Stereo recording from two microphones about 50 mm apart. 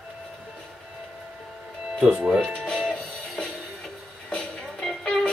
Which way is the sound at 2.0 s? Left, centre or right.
Right.